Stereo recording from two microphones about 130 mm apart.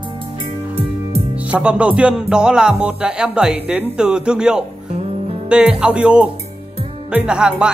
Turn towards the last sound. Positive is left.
turn(degrees=-5)  # may be behind; listen again after turning